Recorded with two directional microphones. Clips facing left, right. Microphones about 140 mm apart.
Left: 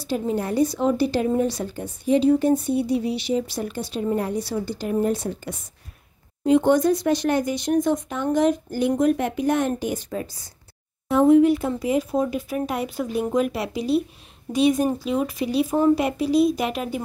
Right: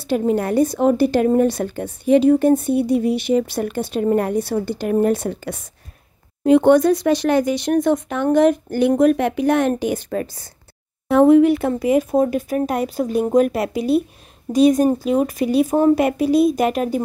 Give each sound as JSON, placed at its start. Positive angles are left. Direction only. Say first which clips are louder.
{"t": 0.0, "sound": "a woman's voice", "louder": "right 6 dB", "side_deg": -60}
{"t": 14.5, "sound": "speech", "louder": "right 6 dB", "side_deg": -40}